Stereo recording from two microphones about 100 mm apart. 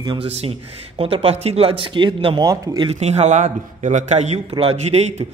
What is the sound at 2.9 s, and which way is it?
Speech, 90° right.